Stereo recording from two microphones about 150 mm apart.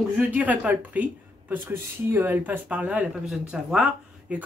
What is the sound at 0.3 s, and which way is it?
Speech, 10° right (ahead or behind).